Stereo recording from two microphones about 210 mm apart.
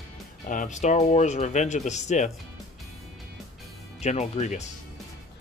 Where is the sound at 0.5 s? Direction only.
35° left (ahead or behind).